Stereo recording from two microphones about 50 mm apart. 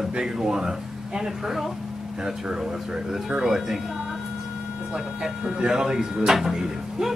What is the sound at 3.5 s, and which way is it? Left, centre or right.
Speech, centre.